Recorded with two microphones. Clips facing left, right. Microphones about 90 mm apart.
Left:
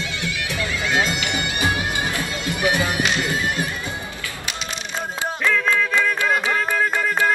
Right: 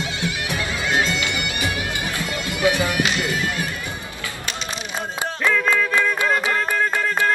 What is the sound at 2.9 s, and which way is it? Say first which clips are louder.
Music: even; 25° left (ahead or behind).